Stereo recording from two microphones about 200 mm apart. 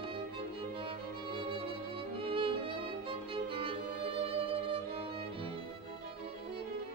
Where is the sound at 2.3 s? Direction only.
25° right (ahead or behind).